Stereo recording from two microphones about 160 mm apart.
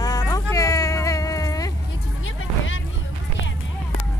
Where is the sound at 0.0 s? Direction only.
25° left (ahead or behind).